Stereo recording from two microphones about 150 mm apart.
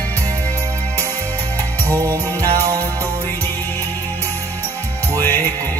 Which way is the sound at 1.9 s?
20° right (ahead or behind).